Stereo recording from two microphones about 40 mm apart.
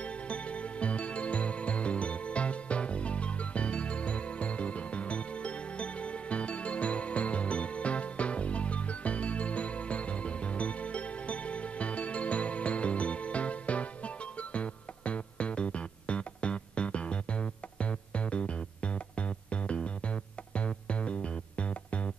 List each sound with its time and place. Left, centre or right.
0.0 s music: left